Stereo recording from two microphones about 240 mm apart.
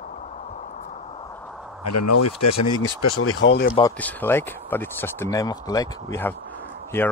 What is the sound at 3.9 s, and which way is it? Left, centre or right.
Speech, centre.